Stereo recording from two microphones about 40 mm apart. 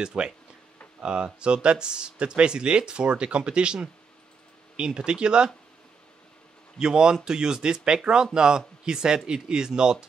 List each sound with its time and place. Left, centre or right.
0.0 s speech: right
6.8 s speech: centre